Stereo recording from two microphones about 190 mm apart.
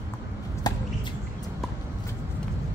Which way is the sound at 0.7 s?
20° left (ahead or behind).